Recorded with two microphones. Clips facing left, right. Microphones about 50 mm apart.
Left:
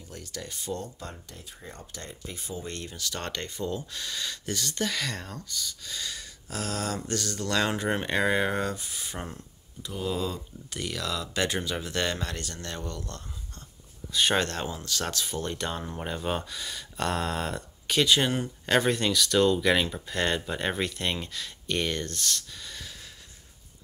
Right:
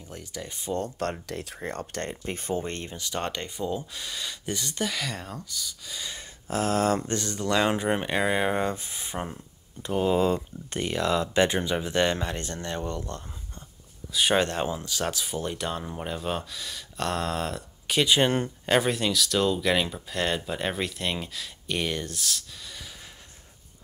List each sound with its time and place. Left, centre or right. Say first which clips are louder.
0.1 s speech: right 2 dB; centre
0.8 s speech: right 11 dB; right
2.7 s speech: right 3 dB; right; by 6.0 s centre
6.0 s speech: right 2 dB; right
8.7 s speech: right 3 dB; right
9.8 s speech: right 7 dB; right; by 18.3 s centre
18.7 s speech: even; centre